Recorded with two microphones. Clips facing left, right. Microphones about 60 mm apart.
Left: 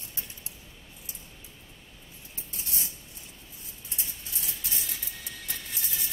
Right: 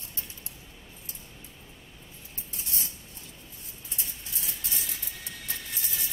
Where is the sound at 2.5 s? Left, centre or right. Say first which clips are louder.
Even; centre.